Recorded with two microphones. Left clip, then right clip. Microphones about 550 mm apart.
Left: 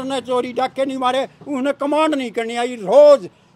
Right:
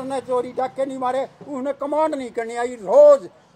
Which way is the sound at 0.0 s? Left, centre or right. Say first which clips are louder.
Left 3 dB; left.